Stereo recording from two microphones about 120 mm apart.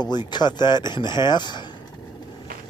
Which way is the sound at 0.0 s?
35° left (ahead or behind).